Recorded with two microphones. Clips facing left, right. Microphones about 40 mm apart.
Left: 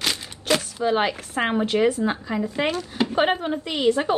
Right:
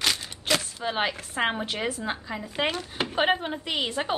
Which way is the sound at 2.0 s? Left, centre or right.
Centre.